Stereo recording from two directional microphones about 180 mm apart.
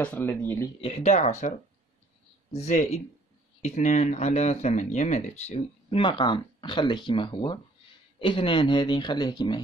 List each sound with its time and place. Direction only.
0.0 s speech: 10° left (ahead or behind)
0.7 s speech: 35° left (ahead or behind)
2.5 s speech: 40° left (ahead or behind); by 9.6 s 25° left (ahead or behind)